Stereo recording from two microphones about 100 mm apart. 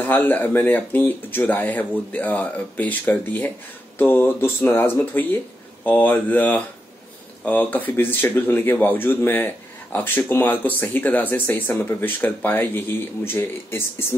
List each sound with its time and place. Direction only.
0.0 s speech: 15° left (ahead or behind)